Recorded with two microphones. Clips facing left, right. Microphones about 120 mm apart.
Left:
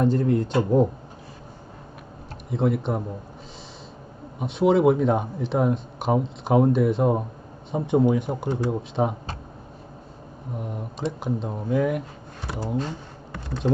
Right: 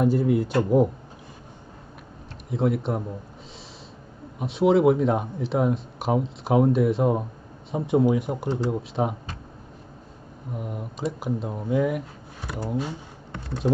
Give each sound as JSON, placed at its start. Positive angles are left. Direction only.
{"t": 0.0, "sound": "speech", "side_deg": -5}
{"t": 2.5, "sound": "speech", "side_deg": 0}
{"t": 4.4, "sound": "speech", "side_deg": 0}
{"t": 10.5, "sound": "speech", "side_deg": -5}